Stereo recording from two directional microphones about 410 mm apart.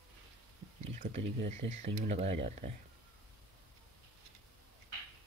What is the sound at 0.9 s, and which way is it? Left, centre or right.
Speech, centre.